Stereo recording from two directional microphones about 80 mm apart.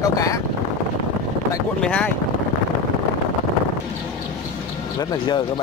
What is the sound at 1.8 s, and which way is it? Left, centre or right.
Speech, centre.